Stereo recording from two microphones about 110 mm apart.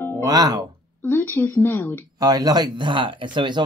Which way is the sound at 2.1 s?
35° right (ahead or behind).